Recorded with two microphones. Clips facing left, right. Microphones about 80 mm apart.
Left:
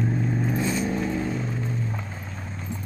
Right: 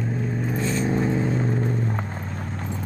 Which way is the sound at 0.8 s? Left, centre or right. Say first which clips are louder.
Right 3 dB; right.